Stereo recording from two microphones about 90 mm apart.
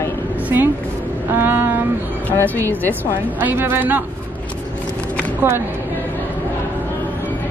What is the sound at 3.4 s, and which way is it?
Speech, 25° right (ahead or behind).